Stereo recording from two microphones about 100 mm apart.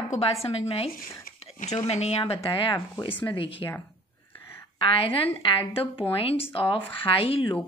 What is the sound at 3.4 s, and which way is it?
Speech, 60° left (ahead or behind).